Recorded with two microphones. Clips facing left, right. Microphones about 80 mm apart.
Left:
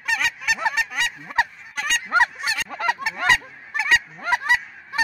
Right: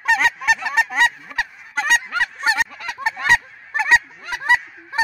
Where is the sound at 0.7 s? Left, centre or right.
Right.